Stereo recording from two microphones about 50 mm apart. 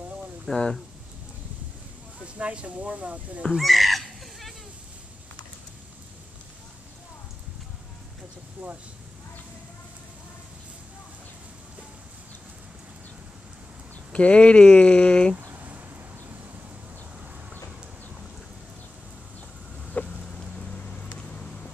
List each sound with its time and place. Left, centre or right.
0.5 s speech: centre
2.2 s speech: right
3.5 s fowl: centre
8.6 s speech: right
14.1 s speech: left
15.5 s a sound: right
20.1 s a sound: centre
20.7 s vehicle: left